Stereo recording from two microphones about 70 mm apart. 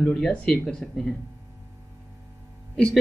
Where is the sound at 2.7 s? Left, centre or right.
Centre.